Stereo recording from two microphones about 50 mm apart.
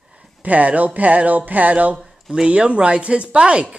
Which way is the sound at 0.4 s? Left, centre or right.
Right.